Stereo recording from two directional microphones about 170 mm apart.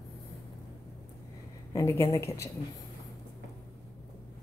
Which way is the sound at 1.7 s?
20° left (ahead or behind).